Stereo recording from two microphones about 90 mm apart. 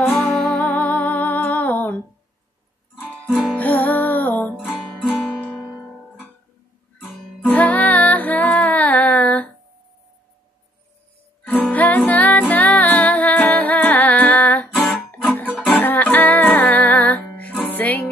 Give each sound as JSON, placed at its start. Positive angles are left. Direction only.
{"t": 0.1, "sound": "music", "side_deg": 5}
{"t": 0.7, "sound": "music", "side_deg": 15}
{"t": 3.5, "sound": "music", "side_deg": 20}
{"t": 7.4, "sound": "music", "side_deg": 20}
{"t": 11.4, "sound": "music", "side_deg": 20}
{"t": 15.0, "sound": "guitar", "side_deg": 20}
{"t": 15.7, "sound": "music", "side_deg": 20}